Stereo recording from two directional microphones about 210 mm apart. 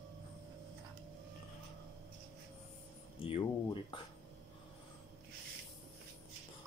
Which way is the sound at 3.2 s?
25° left (ahead or behind).